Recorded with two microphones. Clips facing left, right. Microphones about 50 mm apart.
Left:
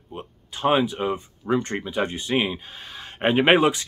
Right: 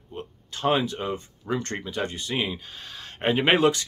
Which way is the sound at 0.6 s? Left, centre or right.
Centre.